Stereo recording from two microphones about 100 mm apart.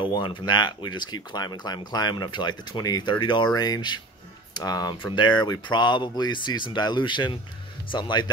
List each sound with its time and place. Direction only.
0.0 s speech: 55° left (ahead or behind)